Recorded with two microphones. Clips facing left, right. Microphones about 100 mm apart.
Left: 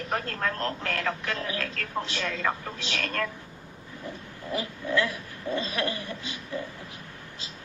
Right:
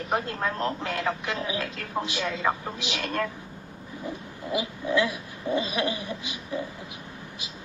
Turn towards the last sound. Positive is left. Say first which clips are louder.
# right 2 dB
turn(degrees=-15)  # may be behind; listen again after turning